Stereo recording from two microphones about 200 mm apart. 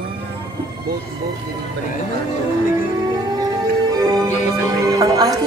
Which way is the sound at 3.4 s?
20° right (ahead or behind).